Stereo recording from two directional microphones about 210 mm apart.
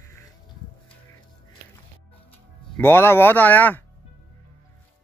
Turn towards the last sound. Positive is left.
turn(degrees=10)  # may be behind; listen again after turning